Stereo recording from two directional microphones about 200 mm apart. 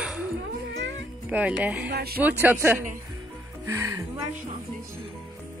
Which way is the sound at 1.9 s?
50° right (ahead or behind).